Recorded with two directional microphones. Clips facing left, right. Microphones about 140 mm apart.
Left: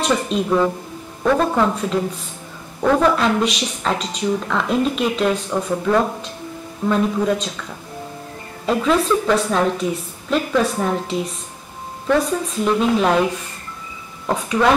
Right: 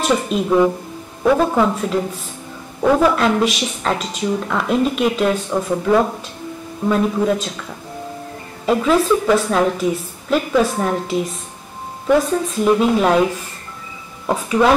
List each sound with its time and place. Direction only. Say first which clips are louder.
0.0 s a woman's voice: right 1 dB; 5° right (ahead or behind)
8.6 s a woman's voice: right 2 dB; centre (ahead or behind)
14.2 s a sound: right 3 dB; 5° right (ahead or behind)